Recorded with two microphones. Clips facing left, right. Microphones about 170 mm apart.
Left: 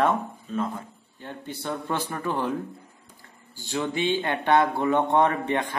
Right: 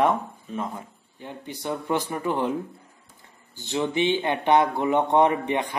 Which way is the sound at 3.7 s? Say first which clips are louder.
Right 2 dB; 20° right (ahead or behind).